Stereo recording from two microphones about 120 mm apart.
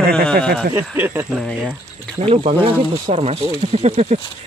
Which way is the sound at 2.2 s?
55° right (ahead or behind).